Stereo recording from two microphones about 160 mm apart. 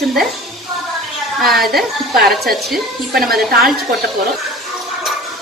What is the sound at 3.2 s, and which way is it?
Speech, 75° right (ahead or behind).